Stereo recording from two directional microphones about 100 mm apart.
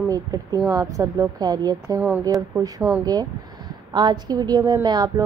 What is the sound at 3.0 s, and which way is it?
A woman's voice, 40° right (ahead or behind).